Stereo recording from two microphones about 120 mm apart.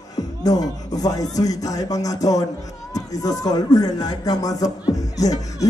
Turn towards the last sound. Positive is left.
turn(degrees=30)  # may be behind; listen again after turning